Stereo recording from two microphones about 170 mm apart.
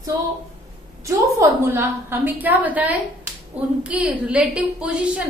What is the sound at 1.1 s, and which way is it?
A woman's voice, 15° right (ahead or behind).